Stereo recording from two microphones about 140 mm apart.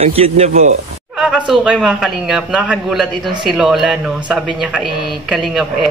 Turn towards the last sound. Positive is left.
turn(degrees=-5)  # may be behind; listen again after turning